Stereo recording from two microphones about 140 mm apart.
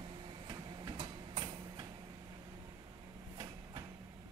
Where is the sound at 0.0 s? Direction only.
35° right (ahead or behind).